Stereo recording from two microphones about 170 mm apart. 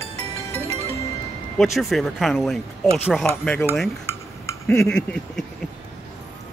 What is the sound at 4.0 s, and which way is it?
Cutlery, 15° left (ahead or behind).